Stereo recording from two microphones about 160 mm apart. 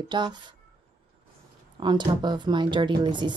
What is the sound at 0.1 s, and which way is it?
Speech, 30° right (ahead or behind).